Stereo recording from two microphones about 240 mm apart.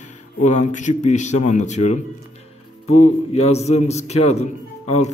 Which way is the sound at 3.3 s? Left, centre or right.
Left.